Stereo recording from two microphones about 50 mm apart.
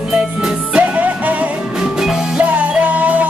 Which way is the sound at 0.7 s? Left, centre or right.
Right.